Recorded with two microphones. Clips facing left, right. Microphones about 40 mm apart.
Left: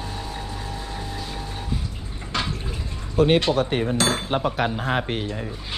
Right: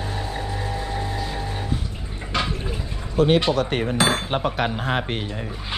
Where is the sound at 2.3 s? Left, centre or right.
Centre.